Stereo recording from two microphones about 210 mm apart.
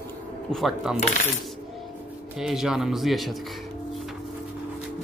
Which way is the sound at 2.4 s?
Centre (ahead or behind).